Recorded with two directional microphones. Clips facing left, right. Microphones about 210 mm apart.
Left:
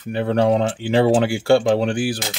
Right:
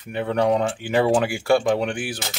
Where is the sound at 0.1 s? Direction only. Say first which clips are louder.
Left 3 dB; 30° left (ahead or behind).